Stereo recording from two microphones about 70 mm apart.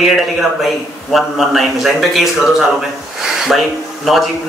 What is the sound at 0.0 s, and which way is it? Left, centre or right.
Speech, centre.